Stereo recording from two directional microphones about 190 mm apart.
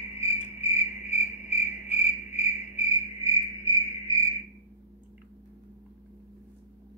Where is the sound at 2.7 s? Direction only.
30° left (ahead or behind).